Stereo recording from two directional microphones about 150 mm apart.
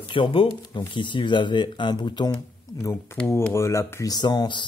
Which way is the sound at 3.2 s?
15° left (ahead or behind).